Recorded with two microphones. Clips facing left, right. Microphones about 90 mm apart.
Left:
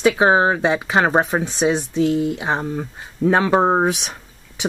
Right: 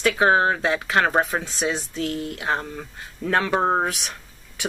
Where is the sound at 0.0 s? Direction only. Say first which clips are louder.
Left 4 dB; 15° left (ahead or behind).